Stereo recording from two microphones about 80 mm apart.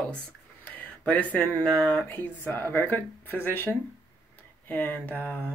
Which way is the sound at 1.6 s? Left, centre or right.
Centre.